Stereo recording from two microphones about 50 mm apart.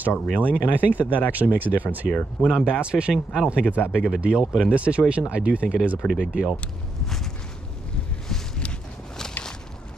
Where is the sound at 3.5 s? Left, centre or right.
Right.